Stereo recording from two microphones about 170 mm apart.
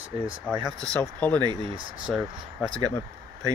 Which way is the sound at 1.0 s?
10° left (ahead or behind).